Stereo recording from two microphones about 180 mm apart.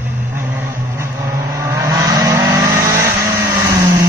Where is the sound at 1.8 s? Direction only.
20° right (ahead or behind).